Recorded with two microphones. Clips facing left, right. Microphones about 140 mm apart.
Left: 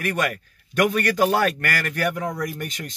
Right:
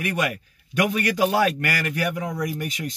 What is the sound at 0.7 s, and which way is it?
A man's voice, 50° left (ahead or behind).